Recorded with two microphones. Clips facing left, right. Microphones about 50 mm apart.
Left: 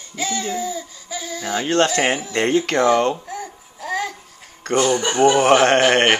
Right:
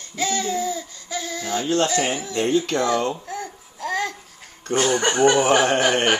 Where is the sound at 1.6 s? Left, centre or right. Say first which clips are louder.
Left 3 dB; left.